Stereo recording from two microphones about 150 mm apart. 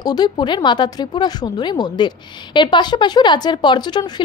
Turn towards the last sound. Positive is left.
turn(degrees=30)  # may be behind; listen again after turning